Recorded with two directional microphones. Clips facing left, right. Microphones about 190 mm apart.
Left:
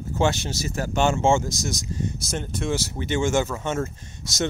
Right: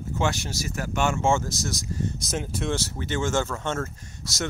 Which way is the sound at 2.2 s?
Centre (ahead or behind).